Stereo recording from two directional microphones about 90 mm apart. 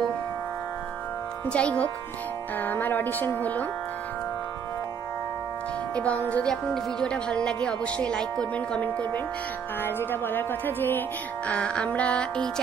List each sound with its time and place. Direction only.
1.5 s speech: 10° left (ahead or behind)
5.9 s speech: 15° left (ahead or behind)